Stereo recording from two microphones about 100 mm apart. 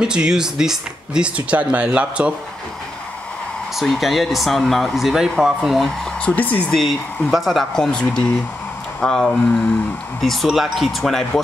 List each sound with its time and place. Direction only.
0.0 s speech: 5° right (ahead or behind)
3.7 s speech: centre (ahead or behind)
6.2 s speech: 15° left (ahead or behind)
6.7 s speech: centre (ahead or behind)